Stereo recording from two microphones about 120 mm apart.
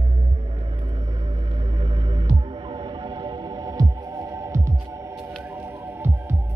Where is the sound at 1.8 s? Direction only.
40° right (ahead or behind).